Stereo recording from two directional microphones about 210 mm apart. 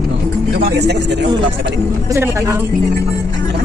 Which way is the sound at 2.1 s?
15° right (ahead or behind).